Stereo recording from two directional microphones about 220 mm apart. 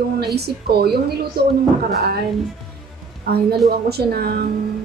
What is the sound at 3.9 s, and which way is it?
Speech, 45° right (ahead or behind).